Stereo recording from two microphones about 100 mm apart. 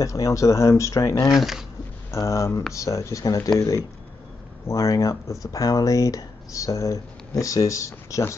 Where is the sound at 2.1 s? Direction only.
30° left (ahead or behind).